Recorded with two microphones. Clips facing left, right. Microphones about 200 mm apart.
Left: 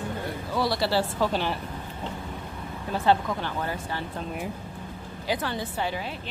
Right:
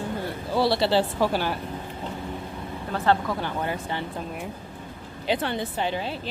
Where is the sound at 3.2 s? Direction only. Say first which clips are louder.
Right 2 dB; 15° right (ahead or behind).